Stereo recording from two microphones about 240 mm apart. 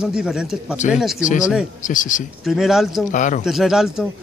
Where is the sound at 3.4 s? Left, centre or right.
Centre.